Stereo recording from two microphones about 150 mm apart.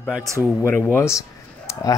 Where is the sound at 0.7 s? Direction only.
10° left (ahead or behind).